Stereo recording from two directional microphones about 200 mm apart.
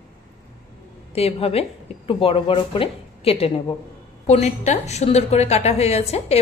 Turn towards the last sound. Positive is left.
turn(degrees=30)  # may be behind; listen again after turning